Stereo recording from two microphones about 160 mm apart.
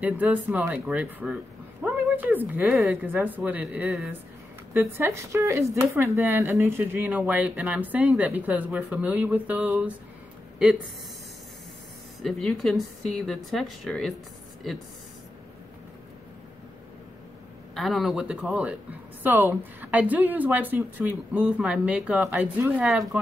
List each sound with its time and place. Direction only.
0.0 s speech: 10° right (ahead or behind)
4.7 s speech: 15° right (ahead or behind)
12.2 s speech: centre (ahead or behind)
17.7 s speech: centre (ahead or behind)